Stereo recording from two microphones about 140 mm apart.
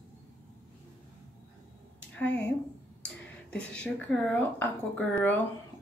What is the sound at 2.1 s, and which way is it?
Speech, 10° left (ahead or behind).